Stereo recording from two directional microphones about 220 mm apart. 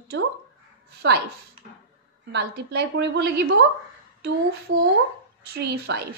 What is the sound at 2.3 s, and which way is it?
A woman's voice, 50° right (ahead or behind).